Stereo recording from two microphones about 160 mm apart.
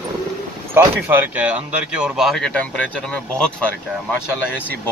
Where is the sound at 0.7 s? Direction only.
15° right (ahead or behind).